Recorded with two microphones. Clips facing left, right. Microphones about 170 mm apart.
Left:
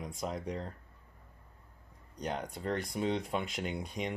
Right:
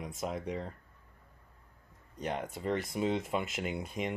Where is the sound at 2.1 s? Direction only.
Centre (ahead or behind).